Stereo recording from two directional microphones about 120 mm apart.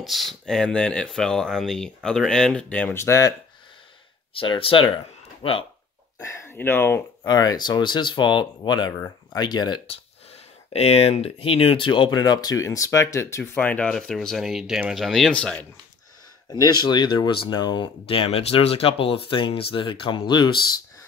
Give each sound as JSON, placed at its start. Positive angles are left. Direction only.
{"t": 0.0, "sound": "speech", "side_deg": 0}
{"t": 3.0, "sound": "speech", "side_deg": 25}
{"t": 4.3, "sound": "speech", "side_deg": 50}
{"t": 6.2, "sound": "speech", "side_deg": 25}
{"t": 7.2, "sound": "speech", "side_deg": 35}
{"t": 9.8, "sound": "speech", "side_deg": 55}
{"t": 13.4, "sound": "speech", "side_deg": 15}
{"t": 16.5, "sound": "speech", "side_deg": 35}